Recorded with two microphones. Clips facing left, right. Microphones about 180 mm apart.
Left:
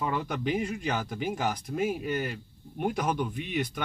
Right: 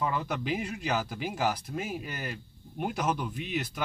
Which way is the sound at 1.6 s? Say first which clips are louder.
Left 6 dB; centre (ahead or behind).